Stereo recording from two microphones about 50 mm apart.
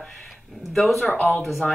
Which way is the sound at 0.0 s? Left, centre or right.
Centre.